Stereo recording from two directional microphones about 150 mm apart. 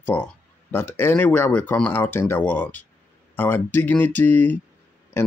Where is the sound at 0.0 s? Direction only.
10° left (ahead or behind).